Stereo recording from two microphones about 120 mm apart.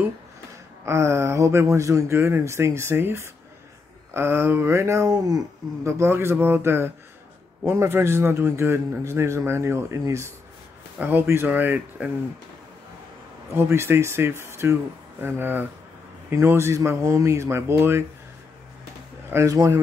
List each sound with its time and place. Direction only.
0.8 s speech: 25° right (ahead or behind)
13.6 s speech: 20° right (ahead or behind)
19.3 s speech: 30° right (ahead or behind)